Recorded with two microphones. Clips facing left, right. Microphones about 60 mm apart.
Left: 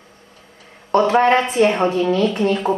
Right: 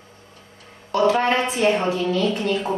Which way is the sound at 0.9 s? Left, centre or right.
Left.